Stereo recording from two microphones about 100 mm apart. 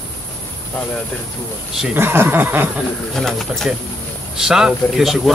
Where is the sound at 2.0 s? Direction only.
20° right (ahead or behind).